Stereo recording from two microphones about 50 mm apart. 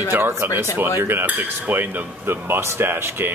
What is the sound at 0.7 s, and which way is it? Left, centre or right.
Speech, right.